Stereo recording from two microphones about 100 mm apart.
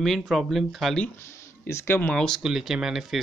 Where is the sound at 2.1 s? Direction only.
5° left (ahead or behind).